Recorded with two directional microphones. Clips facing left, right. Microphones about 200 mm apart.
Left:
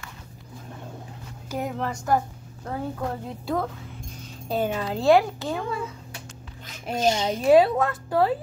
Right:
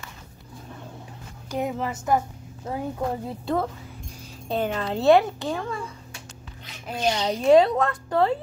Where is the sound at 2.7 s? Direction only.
15° right (ahead or behind).